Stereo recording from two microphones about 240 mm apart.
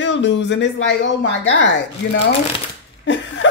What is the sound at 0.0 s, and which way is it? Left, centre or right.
Speech, left.